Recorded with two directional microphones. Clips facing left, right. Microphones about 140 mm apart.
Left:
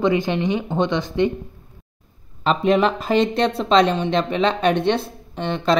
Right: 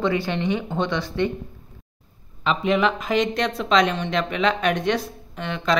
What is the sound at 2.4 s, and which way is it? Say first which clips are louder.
Speech: left 3 dB; 40° left (ahead or behind).